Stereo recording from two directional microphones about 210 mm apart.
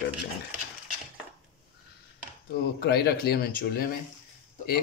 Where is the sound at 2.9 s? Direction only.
50° left (ahead or behind).